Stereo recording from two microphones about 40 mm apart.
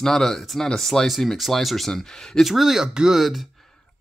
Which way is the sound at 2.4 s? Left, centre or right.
Centre.